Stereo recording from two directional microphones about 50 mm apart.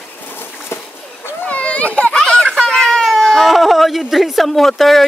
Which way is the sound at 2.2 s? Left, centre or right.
Centre.